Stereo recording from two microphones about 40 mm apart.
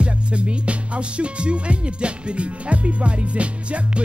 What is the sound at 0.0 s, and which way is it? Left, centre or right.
Music, right.